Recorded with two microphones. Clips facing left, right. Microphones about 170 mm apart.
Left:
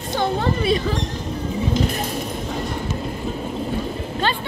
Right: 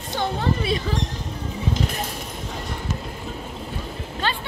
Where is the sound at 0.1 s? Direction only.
45° left (ahead or behind).